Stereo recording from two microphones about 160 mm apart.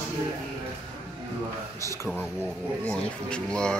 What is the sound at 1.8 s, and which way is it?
Speech, 20° left (ahead or behind).